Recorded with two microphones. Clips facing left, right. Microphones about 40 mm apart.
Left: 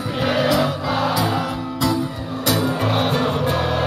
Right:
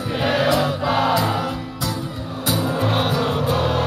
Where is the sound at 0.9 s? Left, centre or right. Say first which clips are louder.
Right 2 dB; right.